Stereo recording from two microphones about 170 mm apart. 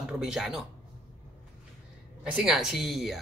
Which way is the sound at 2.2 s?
5° right (ahead or behind).